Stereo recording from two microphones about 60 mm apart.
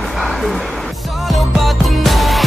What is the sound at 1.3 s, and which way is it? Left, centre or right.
Music, centre.